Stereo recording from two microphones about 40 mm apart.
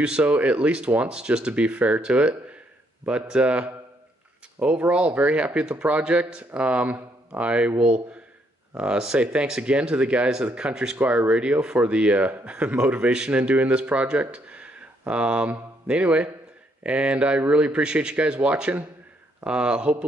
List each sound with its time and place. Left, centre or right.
0.0 s a man's voice: right
8.7 s speech: right
11.0 s a man's voice: right
13.3 s a man's voice: right